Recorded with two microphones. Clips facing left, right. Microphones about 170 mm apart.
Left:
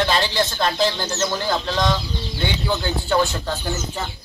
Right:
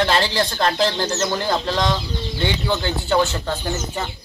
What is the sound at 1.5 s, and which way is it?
Speech, 10° right (ahead or behind).